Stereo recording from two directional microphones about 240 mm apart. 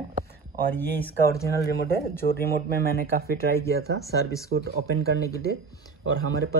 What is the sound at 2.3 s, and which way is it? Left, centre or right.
Speech, left.